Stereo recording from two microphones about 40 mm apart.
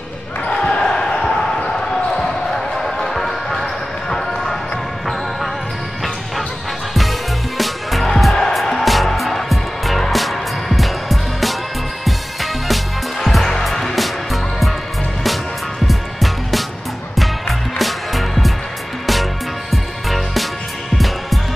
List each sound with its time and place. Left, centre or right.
0.5 s basketball bounce: centre
6.9 s music: centre
15.9 s music: centre
19.7 s music: centre